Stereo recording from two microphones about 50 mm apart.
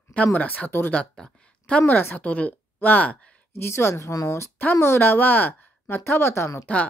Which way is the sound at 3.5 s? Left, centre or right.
Left.